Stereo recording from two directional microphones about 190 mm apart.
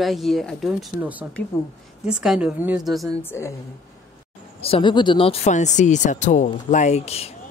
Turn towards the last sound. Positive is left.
turn(degrees=35)  # may be behind; listen again after turning